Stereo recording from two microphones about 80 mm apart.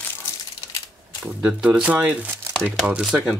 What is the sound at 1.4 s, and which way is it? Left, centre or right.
Speech, centre.